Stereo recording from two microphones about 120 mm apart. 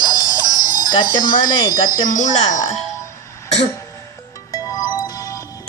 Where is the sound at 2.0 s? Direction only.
90° left.